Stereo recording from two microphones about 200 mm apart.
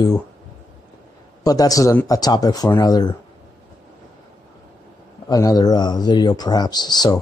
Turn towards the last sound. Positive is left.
turn(degrees=20)  # may be behind; listen again after turning